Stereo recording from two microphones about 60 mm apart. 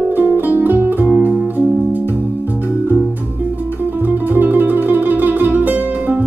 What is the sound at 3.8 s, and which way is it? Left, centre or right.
Music, right.